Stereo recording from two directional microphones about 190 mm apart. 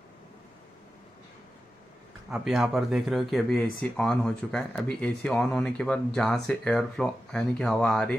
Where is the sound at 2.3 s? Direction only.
Centre (ahead or behind).